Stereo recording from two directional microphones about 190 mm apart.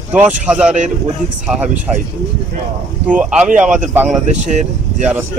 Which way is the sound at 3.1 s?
5° right (ahead or behind).